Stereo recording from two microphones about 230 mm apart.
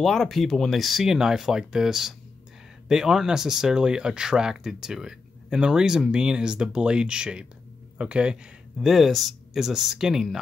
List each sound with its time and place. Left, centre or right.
0.0 s speech: centre